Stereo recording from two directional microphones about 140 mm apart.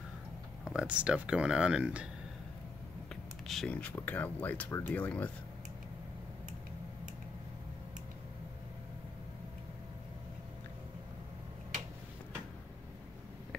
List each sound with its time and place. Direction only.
0.7 s speech: 5° right (ahead or behind)
3.4 s speech: 5° left (ahead or behind)